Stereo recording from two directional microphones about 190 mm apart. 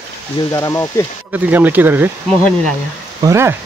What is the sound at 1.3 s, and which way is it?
Speech, 10° right (ahead or behind).